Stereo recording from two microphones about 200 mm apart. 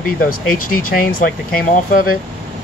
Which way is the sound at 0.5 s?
90° left.